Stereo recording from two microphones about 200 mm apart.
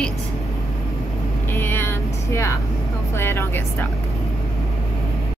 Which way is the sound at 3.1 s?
10° left (ahead or behind).